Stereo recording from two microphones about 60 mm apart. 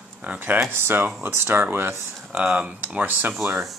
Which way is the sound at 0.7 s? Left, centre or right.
Right.